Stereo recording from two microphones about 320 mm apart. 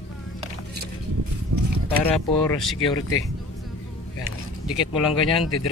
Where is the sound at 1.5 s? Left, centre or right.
Right.